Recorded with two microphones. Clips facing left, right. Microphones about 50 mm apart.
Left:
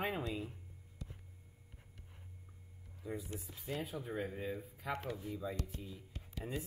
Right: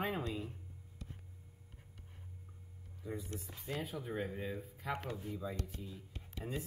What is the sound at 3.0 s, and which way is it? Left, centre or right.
Speech, centre.